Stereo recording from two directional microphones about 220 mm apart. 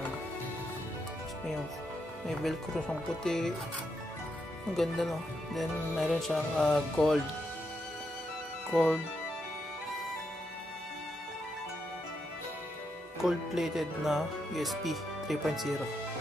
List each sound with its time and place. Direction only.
2.2 s speech: centre (ahead or behind)
4.7 s speech: centre (ahead or behind)
8.7 s speech: centre (ahead or behind)
13.2 s speech: centre (ahead or behind)